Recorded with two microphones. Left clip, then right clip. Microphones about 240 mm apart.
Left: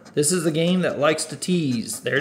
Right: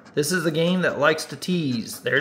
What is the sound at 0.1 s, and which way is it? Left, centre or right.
A man's voice, centre.